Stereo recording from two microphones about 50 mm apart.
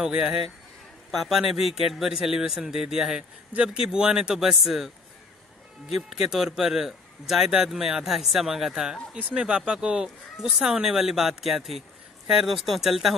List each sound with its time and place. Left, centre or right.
0.0 s speech: centre
1.2 s speech: centre
3.2 s a man's voice: right; by 4.9 s centre
5.9 s speech: centre
9.1 s a man's voice: right; by 13.1 s centre